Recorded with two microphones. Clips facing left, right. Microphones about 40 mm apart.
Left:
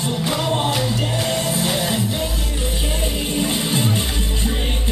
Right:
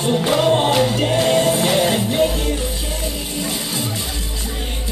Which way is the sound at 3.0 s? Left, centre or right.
Left.